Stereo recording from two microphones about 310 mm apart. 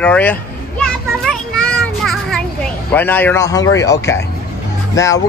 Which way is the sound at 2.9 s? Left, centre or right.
Centre.